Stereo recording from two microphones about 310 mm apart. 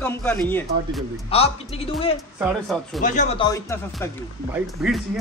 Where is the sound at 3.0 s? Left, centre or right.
Left; by 5.2 s centre.